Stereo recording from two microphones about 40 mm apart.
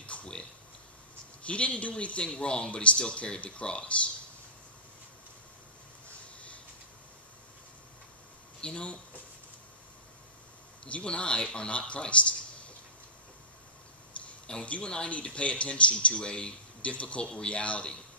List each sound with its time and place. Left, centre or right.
0.0 s a sound: left
1.4 s a man's voice: left
8.5 s speech: left
10.9 s a man's voice: left
14.5 s a man's voice: left